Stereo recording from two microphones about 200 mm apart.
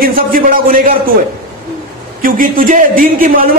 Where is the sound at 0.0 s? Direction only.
45° right (ahead or behind).